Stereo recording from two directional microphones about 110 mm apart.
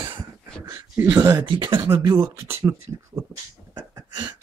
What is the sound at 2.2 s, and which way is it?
Speech, 25° right (ahead or behind).